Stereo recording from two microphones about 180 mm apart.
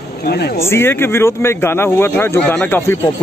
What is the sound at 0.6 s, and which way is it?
Speech, 15° left (ahead or behind).